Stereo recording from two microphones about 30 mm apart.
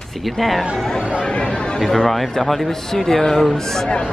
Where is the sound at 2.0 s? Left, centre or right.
Centre.